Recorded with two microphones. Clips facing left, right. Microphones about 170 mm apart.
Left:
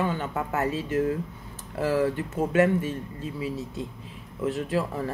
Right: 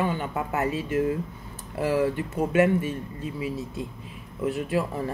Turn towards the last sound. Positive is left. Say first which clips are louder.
# right 1 dB
turn(degrees=-15)  # may be behind; listen again after turning